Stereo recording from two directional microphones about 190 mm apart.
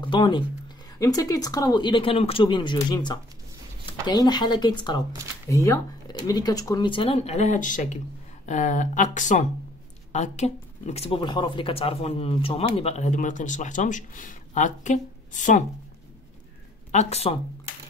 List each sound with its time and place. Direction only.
0.0 s speech: 25° left (ahead or behind); by 15.6 s 40° left (ahead or behind)
16.9 s speech: 35° left (ahead or behind)